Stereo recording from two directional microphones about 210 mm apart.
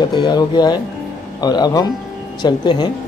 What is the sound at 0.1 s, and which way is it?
Speech, 20° left (ahead or behind).